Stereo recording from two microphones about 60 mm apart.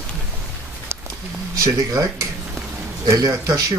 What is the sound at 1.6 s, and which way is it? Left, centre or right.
Speech, right.